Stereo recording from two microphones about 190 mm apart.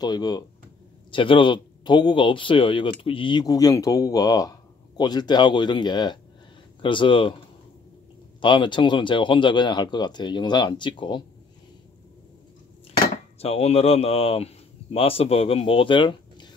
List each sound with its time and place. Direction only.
0.0 s speech: 20° left (ahead or behind)
8.4 s speech: 25° left (ahead or behind)
13.4 s speech: 35° left (ahead or behind)